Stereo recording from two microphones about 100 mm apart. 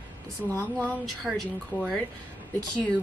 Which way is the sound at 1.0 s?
Centre (ahead or behind).